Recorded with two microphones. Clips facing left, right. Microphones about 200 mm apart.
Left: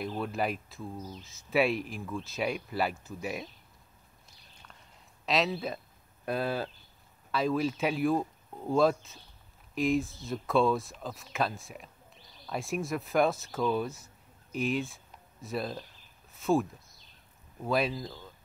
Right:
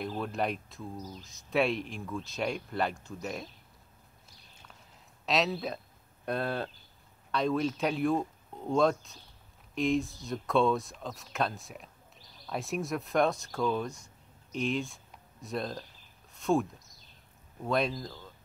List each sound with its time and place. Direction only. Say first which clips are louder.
0.0 s speech: even; centre (ahead or behind)
4.6 s a sound: even; 5° right (ahead or behind)
6.2 s speech: left 1 dB; centre (ahead or behind)
17.6 s speech: even; 5° left (ahead or behind)